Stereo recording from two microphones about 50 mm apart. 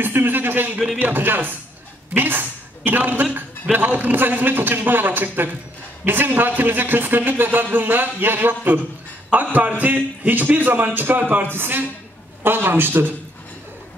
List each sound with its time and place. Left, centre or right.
0.0 s a man's voice: right
11.5 s speech: right